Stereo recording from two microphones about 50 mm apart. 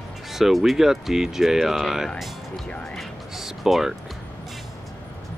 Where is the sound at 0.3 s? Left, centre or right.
Centre.